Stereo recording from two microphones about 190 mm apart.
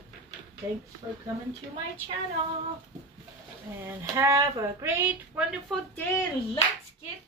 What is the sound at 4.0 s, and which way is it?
Speech, 15° right (ahead or behind).